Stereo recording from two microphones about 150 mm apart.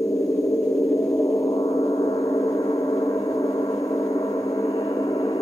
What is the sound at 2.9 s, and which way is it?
Gong, 20° left (ahead or behind).